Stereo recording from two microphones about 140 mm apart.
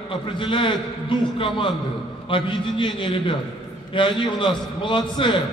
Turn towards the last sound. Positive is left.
turn(degrees=35)  # may be behind; listen again after turning